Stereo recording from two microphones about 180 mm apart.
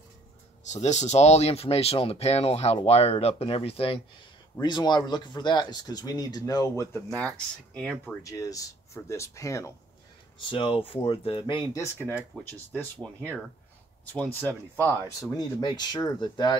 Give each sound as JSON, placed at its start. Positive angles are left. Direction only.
{"t": 0.7, "sound": "speech", "side_deg": 40}
{"t": 7.2, "sound": "speech", "side_deg": 5}
{"t": 8.2, "sound": "speech", "side_deg": 20}
{"t": 10.5, "sound": "speech", "side_deg": 30}
{"t": 12.0, "sound": "speech", "side_deg": -10}
{"t": 14.1, "sound": "speech", "side_deg": 5}